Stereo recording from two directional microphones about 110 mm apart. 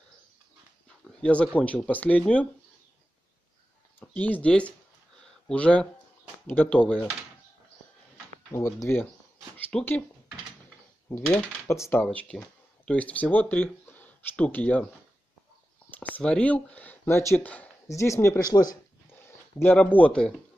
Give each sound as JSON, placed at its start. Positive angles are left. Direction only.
{"t": 0.8, "sound": "speech", "side_deg": 10}
{"t": 4.0, "sound": "speech", "side_deg": 15}
{"t": 5.2, "sound": "a sound", "side_deg": 10}
{"t": 6.4, "sound": "speech", "side_deg": 15}
{"t": 8.5, "sound": "speech", "side_deg": 25}
{"t": 11.2, "sound": "speech", "side_deg": 10}
{"t": 11.6, "sound": "speech", "side_deg": 25}
{"t": 12.0, "sound": "speech", "side_deg": 15}
{"t": 15.9, "sound": "speech", "side_deg": 15}
{"t": 19.6, "sound": "speech", "side_deg": 15}